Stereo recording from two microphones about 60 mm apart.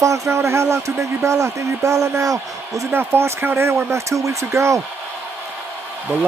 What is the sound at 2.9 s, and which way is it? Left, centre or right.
Speech, right.